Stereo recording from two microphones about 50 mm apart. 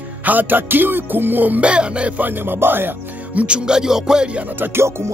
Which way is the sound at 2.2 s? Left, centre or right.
Right.